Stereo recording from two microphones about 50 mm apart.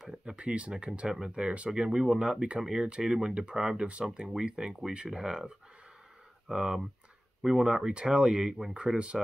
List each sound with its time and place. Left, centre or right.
0.1 s speech: right